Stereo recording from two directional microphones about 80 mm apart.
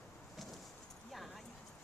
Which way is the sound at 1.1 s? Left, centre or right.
Centre.